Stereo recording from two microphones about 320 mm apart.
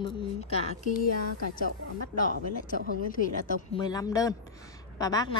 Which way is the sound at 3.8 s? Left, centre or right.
Centre.